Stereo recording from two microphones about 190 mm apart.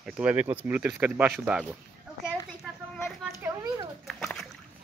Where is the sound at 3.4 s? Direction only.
15° right (ahead or behind).